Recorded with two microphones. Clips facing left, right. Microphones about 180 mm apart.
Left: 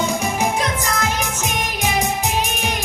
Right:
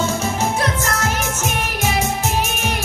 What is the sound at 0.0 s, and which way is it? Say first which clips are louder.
Music: even; 15° left (ahead or behind).